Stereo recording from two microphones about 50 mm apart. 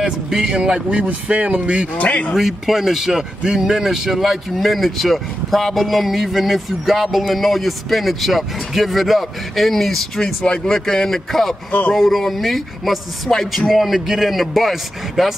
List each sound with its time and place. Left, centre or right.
0.0 s speech: centre
0.8 s speech: right
2.0 s a man's voice: left
2.3 s speech: centre